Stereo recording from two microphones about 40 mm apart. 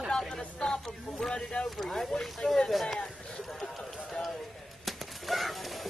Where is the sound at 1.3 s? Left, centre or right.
Left.